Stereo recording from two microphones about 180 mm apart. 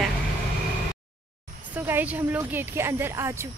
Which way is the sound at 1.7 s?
10° right (ahead or behind).